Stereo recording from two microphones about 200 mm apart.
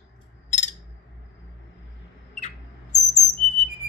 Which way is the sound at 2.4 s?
35° left (ahead or behind).